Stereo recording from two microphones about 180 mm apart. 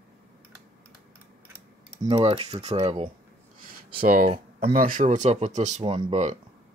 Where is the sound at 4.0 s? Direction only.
55° right (ahead or behind); by 6.4 s 35° right (ahead or behind).